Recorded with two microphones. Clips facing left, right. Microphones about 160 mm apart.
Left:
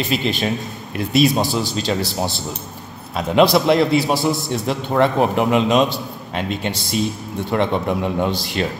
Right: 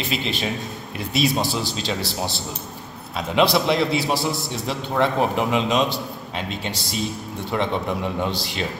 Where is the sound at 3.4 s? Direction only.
Centre (ahead or behind).